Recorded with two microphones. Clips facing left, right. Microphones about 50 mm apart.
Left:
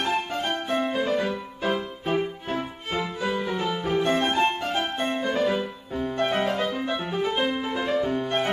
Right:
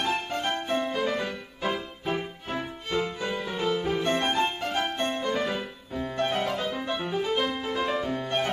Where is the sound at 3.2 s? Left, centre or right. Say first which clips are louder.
Left 3 dB; centre.